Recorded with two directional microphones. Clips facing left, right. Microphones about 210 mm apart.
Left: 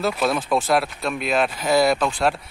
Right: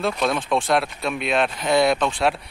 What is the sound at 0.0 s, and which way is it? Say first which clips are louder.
Speech: left 1 dB; 5° left (ahead or behind).